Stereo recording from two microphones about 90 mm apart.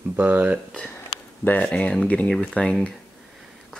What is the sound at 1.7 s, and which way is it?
Speech, 10° left (ahead or behind).